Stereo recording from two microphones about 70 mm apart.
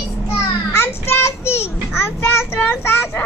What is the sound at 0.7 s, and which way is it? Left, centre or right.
Child singing, left.